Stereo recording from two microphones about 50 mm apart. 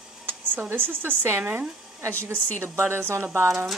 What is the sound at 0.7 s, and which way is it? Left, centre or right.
Speech, right.